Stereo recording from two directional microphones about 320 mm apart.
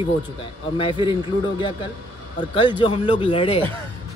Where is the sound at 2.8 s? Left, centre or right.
Centre.